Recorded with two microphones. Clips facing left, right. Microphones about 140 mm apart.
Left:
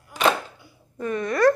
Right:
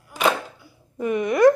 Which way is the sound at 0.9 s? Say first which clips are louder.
Right 4 dB; 15° right (ahead or behind).